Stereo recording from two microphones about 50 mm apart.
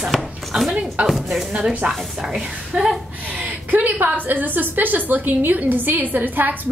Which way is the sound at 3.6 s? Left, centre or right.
Right.